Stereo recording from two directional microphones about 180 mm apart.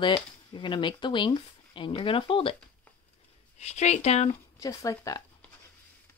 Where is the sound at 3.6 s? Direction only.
40° left (ahead or behind).